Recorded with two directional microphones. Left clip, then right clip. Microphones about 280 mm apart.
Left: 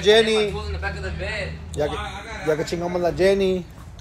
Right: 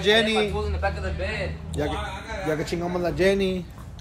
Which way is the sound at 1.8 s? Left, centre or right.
Centre.